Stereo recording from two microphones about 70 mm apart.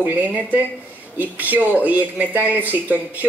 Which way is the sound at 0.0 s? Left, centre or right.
Right.